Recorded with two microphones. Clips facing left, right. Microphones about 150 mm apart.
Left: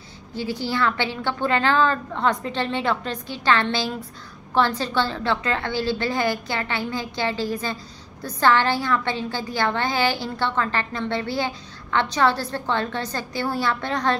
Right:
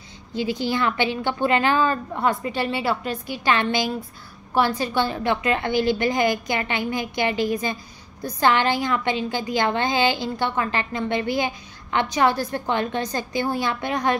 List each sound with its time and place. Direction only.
0.3 s a woman's voice: 15° right (ahead or behind)